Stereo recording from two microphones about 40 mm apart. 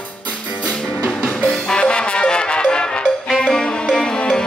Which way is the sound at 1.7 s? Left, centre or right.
Left.